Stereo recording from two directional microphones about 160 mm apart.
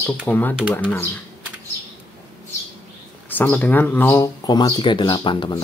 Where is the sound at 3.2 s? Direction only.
10° left (ahead or behind).